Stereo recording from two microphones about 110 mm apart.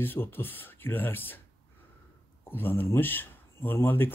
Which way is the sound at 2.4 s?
20° left (ahead or behind).